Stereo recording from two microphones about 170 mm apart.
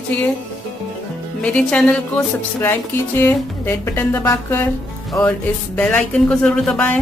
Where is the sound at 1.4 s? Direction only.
5° left (ahead or behind).